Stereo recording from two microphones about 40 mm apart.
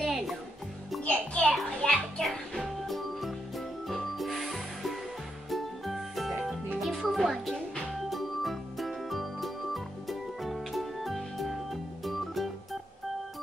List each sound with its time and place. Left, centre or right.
0.0 s music: centre
1.0 s music: left
1.5 s music: centre